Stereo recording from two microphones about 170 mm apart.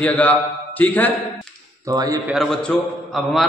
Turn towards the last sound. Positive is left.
turn(degrees=5)  # may be behind; listen again after turning